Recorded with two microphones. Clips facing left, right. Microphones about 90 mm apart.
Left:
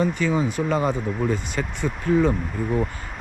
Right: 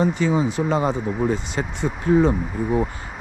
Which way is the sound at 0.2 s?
20° right (ahead or behind).